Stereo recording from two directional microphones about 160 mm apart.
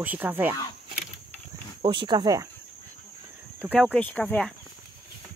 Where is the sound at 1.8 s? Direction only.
30° right (ahead or behind).